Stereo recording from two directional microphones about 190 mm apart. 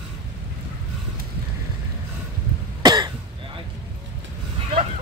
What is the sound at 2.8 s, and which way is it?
Cough, 20° right (ahead or behind).